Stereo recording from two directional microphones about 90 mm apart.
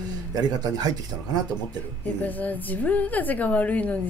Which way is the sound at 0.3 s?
45° right (ahead or behind).